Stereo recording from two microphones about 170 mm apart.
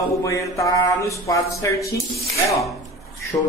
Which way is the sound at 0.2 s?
20° left (ahead or behind).